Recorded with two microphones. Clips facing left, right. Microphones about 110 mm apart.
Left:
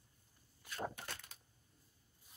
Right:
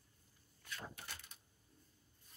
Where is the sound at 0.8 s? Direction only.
75° left (ahead or behind).